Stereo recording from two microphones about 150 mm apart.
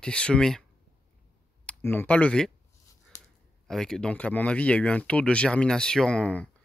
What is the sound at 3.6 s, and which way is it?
Speech, 5° left (ahead or behind).